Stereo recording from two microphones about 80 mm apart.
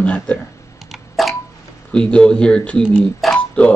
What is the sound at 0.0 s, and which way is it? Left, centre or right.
Speech, centre.